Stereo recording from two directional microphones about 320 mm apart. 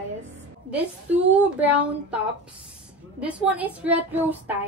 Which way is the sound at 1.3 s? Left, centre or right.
Centre.